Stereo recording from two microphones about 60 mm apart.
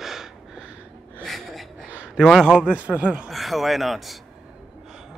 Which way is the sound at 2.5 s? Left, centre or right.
Centre.